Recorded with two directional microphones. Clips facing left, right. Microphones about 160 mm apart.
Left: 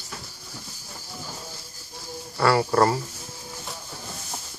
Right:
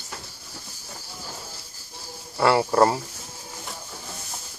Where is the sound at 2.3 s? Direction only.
20° right (ahead or behind).